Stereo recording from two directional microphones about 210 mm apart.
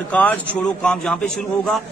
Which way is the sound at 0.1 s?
5° left (ahead or behind).